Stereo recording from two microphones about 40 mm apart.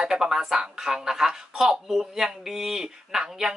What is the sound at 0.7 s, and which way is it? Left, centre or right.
Speech, centre.